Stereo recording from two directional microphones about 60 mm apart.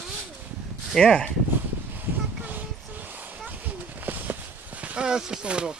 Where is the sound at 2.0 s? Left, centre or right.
Right.